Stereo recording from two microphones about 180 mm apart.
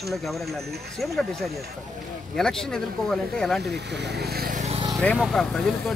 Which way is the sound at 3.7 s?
70° right (ahead or behind).